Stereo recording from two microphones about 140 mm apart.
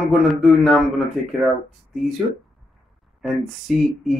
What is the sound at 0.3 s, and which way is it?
Speech, centre (ahead or behind).